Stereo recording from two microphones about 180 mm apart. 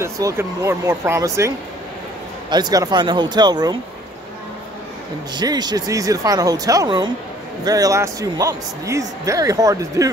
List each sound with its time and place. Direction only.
0.0 s speech: 15° right (ahead or behind)
2.5 s speech: 20° right (ahead or behind)
5.3 s speech: 25° right (ahead or behind)